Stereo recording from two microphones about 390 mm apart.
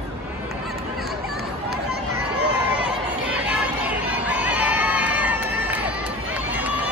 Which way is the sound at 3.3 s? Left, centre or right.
Centre.